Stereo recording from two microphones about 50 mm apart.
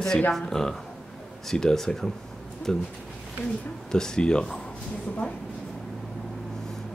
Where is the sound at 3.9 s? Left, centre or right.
Centre.